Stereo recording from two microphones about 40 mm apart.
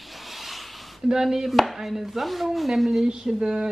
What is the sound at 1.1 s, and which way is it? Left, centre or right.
Speech, centre.